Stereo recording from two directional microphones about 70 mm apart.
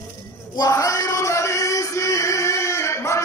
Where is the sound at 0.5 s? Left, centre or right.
Left.